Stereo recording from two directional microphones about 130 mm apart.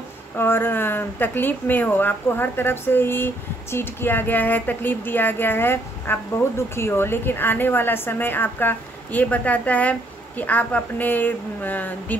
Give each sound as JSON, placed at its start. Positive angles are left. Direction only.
{"t": 0.4, "sound": "speech", "side_deg": 15}